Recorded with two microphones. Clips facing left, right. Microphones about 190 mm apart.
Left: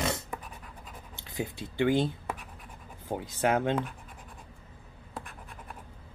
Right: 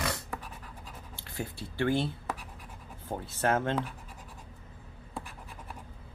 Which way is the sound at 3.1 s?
15° left (ahead or behind).